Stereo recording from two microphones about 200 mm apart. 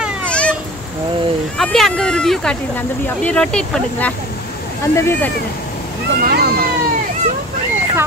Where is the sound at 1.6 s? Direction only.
5° left (ahead or behind).